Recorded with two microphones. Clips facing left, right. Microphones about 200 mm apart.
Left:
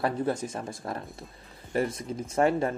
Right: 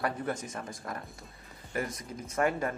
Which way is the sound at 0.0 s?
30° left (ahead or behind).